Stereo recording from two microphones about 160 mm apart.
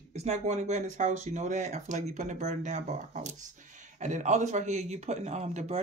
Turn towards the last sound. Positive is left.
turn(degrees=-45)  # may be behind; listen again after turning